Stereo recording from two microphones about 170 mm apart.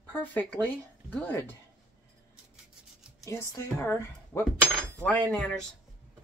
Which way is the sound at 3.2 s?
20° left (ahead or behind).